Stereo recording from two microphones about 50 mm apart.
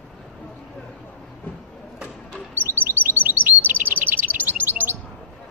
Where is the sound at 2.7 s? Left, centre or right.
Right.